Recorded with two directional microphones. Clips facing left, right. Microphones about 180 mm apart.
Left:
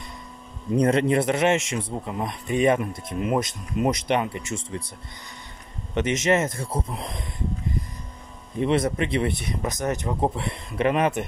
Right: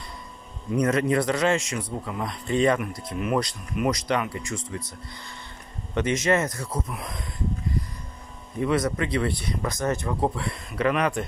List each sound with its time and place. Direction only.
0.7 s a man's voice: 30° left (ahead or behind)
5.9 s a man's voice: 20° left (ahead or behind)
8.5 s a man's voice: 25° left (ahead or behind)